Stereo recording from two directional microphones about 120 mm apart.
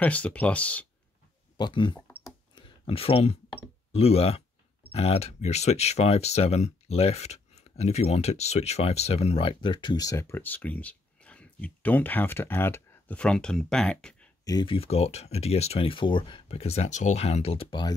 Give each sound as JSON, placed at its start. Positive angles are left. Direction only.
{"t": 0.0, "sound": "speech", "side_deg": 10}
{"t": 1.6, "sound": "speech", "side_deg": 40}
{"t": 2.5, "sound": "a sound", "side_deg": 45}
{"t": 3.9, "sound": "speech", "side_deg": 55}
{"t": 10.0, "sound": "speech", "side_deg": 25}
{"t": 14.4, "sound": "speech", "side_deg": 35}
{"t": 14.8, "sound": "speech", "side_deg": 60}